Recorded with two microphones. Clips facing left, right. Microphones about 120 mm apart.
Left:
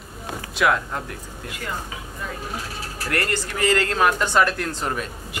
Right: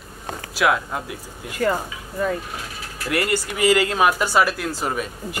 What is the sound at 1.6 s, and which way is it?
Speech, 50° right (ahead or behind).